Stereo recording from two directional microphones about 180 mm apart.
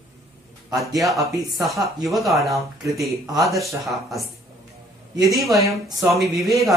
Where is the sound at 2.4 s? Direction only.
Centre (ahead or behind).